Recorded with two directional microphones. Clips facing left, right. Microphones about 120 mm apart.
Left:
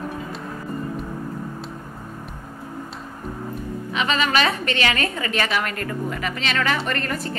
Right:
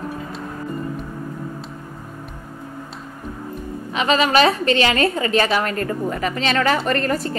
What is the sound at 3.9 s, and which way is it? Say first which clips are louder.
A woman's voice: right 5 dB; 35° right (ahead or behind).